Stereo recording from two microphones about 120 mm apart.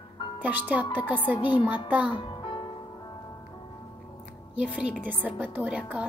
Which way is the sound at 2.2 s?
45° left (ahead or behind).